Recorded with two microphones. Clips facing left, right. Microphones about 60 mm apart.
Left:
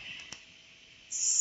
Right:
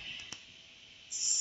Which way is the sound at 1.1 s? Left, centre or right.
Centre.